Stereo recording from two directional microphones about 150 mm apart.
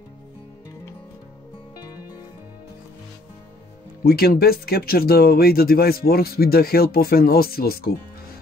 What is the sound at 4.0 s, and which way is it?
Speech, 90° left.